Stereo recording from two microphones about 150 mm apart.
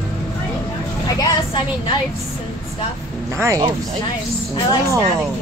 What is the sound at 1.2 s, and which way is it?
Speech, 30° left (ahead or behind).